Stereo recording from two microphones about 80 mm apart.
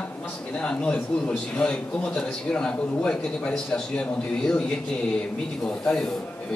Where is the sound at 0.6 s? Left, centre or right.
Centre.